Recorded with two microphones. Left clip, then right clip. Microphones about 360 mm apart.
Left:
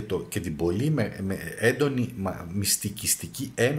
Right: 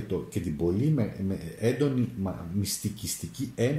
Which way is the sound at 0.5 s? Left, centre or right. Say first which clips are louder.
Left 1 dB; left.